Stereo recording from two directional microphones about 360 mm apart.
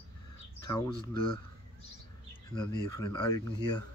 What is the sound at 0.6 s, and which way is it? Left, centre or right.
Bird, centre.